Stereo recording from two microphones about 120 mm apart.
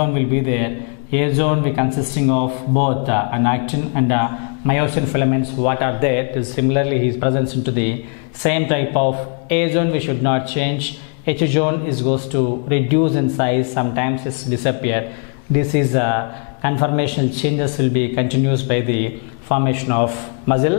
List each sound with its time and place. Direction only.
0.0 s a man's voice: 10° left (ahead or behind)